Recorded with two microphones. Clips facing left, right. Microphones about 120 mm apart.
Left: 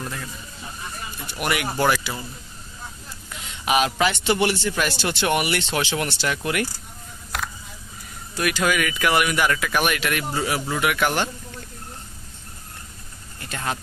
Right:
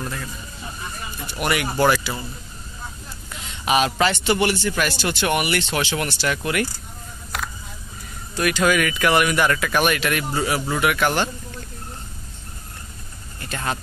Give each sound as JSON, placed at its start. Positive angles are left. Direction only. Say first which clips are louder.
{"t": 1.4, "sound": "speech", "louder": "right 2 dB", "side_deg": 10}
{"t": 2.1, "sound": "speech", "louder": "right 2 dB", "side_deg": -5}
{"t": 3.6, "sound": "speech", "louder": "right 1 dB", "side_deg": 10}
{"t": 7.3, "sound": "a sound", "louder": "even", "side_deg": 0}
{"t": 8.4, "sound": "speech", "louder": "right 3 dB", "side_deg": 5}
{"t": 13.5, "sound": "speech", "louder": "right 1 dB", "side_deg": 10}